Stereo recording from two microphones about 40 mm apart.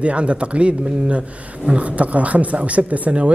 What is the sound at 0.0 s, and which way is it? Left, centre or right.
A man's voice, right.